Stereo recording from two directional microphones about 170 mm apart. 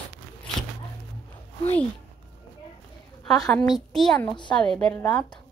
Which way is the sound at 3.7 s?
Centre (ahead or behind).